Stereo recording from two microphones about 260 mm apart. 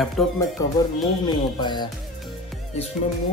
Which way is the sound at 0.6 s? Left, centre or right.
Centre.